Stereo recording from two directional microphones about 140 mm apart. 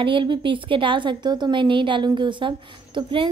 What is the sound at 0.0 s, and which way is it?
A woman's voice, 35° right (ahead or behind).